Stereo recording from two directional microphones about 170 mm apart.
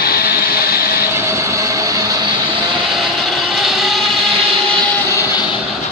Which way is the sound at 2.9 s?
Centre (ahead or behind).